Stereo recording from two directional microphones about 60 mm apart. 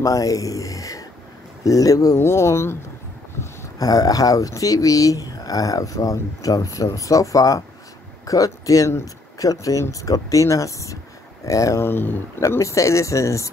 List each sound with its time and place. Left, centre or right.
0.0 s speech: left
2.1 s speech: left
3.7 s speech: left
11.8 s speech: left
12.4 s speech: left